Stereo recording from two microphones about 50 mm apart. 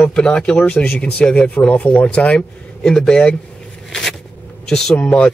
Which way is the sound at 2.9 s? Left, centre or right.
Centre.